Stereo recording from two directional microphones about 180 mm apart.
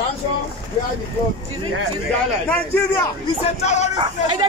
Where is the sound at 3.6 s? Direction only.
40° left (ahead or behind).